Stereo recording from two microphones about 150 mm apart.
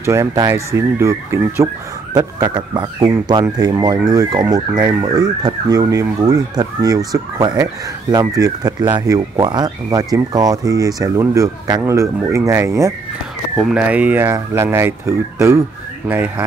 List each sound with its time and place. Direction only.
0.0 s speech: 20° right (ahead or behind)
13.6 s speech: 5° right (ahead or behind)